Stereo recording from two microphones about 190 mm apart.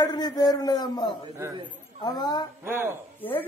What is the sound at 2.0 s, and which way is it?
Speech, 20° left (ahead or behind).